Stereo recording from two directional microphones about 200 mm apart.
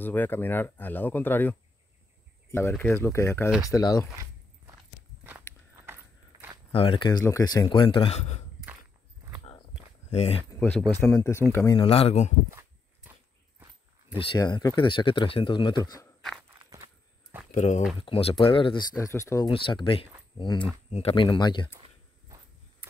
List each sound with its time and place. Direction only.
0.0 s speech: 10° left (ahead or behind)
2.7 s speech: 10° left (ahead or behind)
5.5 s walk: 10° left (ahead or behind)
6.7 s speech: 25° left (ahead or behind)
10.0 s speech: 30° left (ahead or behind)
11.0 s speech: 15° left (ahead or behind)
11.8 s speech: 30° left (ahead or behind)
12.4 s a sound: 15° right (ahead or behind)
14.2 s speech: 25° left (ahead or behind)
16.2 s walk: centre (ahead or behind)
17.5 s speech: 35° left (ahead or behind); by 19.5 s 15° left (ahead or behind)
19.5 s speech: 25° left (ahead or behind)